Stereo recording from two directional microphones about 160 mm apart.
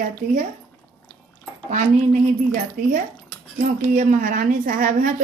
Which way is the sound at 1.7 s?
50° right (ahead or behind).